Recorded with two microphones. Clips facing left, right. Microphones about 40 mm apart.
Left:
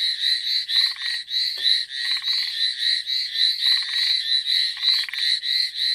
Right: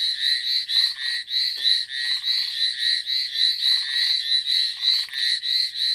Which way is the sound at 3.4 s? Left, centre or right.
Centre.